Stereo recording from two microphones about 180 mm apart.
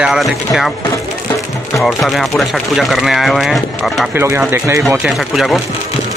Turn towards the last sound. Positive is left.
turn(degrees=-5)  # may be behind; listen again after turning